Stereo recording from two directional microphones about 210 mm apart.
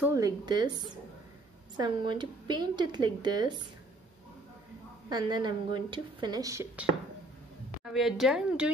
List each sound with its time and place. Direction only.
0.0 s a woman's voice: 15° right (ahead or behind)
5.1 s a woman's voice: 20° right (ahead or behind)
7.8 s a woman's voice: centre (ahead or behind)